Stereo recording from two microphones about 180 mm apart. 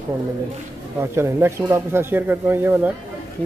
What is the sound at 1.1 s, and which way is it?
Speech, 15° right (ahead or behind).